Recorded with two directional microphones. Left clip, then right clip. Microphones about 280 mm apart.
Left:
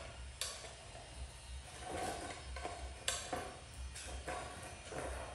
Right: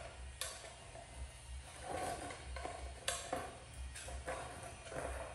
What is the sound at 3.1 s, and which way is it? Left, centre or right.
Cutlery, centre.